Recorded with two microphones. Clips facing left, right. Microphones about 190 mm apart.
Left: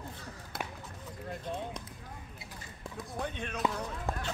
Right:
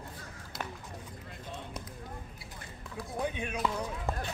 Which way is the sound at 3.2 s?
10° right (ahead or behind).